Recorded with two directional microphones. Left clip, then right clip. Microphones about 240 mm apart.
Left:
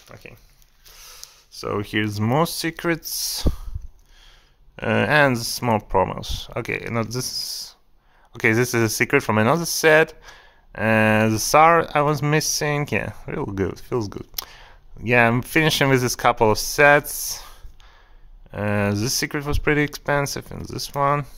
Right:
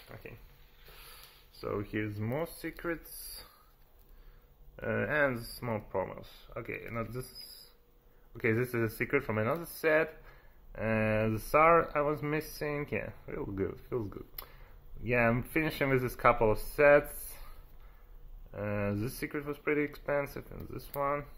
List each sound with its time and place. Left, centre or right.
0.1 s speech: left
1.5 s speech: left
4.7 s speech: left
8.3 s speech: left
18.5 s speech: left